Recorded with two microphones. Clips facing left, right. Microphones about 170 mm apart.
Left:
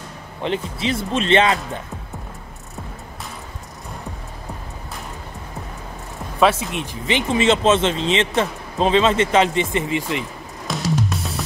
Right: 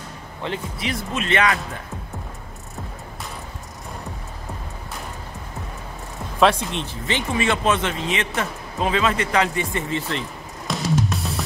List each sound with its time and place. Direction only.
0.4 s speech: 25° left (ahead or behind)
6.4 s speech: 5° left (ahead or behind)
10.7 s music: centre (ahead or behind)